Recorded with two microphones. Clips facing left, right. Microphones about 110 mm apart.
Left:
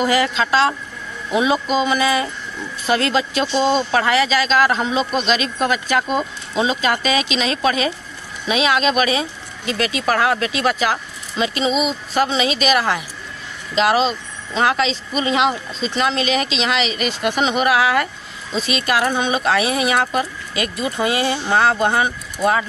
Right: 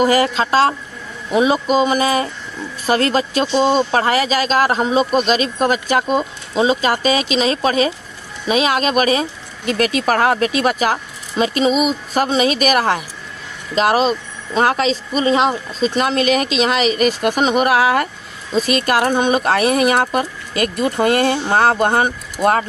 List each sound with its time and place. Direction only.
0.0 s speech: 40° right (ahead or behind)